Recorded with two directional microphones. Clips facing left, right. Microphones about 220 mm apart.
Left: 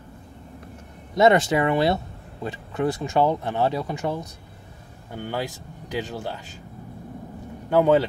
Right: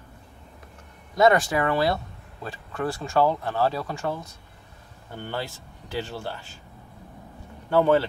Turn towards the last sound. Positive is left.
turn(degrees=15)  # may be behind; listen again after turning